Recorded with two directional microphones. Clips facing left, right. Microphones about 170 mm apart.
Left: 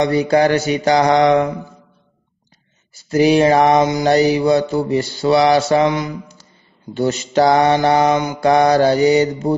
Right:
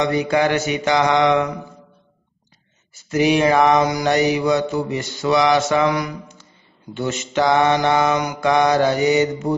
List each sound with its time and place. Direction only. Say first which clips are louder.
0.0 s mantra: left 4 dB; 35° left (ahead or behind)
2.9 s mantra: left 4 dB; 35° left (ahead or behind)
6.9 s mantra: left 6 dB; 35° left (ahead or behind)